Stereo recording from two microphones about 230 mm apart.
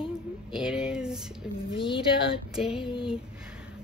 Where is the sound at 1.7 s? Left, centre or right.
Left.